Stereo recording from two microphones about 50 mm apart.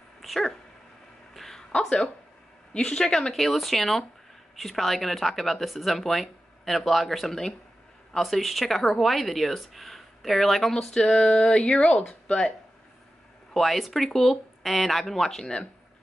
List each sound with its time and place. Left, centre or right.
0.2 s dog: centre
1.3 s a sound: centre
1.8 s speech: centre
10.7 s speech: centre
13.5 s speech: centre